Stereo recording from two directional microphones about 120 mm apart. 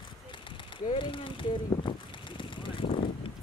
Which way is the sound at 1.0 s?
45° left (ahead or behind).